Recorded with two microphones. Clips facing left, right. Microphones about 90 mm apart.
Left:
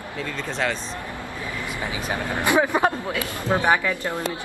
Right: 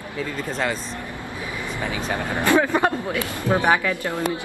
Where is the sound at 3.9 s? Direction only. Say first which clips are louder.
Right 2 dB; 15° left (ahead or behind).